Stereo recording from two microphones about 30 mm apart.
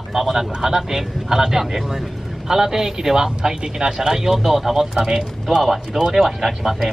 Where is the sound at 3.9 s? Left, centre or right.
Centre.